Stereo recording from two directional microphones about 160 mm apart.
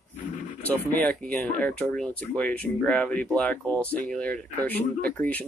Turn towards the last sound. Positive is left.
turn(degrees=10)  # may be behind; listen again after turning